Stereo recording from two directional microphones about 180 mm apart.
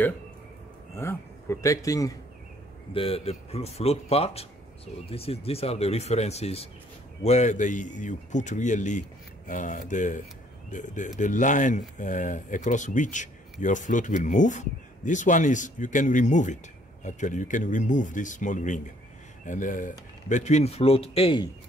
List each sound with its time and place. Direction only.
0.9 s a man's voice: 15° left (ahead or behind)
2.9 s speech: 30° left (ahead or behind)